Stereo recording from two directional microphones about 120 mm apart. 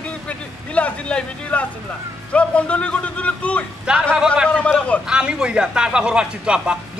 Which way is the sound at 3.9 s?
5° right (ahead or behind).